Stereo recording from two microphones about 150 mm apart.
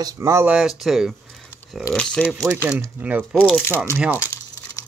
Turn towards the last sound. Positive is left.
turn(degrees=-10)  # may be behind; listen again after turning